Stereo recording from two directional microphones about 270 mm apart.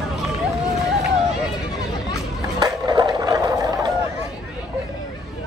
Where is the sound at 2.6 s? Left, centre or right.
Centre.